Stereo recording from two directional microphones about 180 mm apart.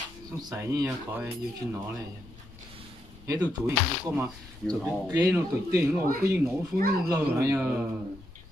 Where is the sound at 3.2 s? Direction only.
20° right (ahead or behind).